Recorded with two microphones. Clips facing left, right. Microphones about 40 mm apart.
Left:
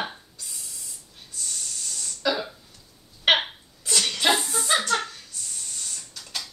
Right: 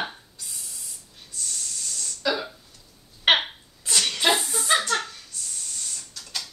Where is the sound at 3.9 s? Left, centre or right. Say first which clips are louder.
Even; centre.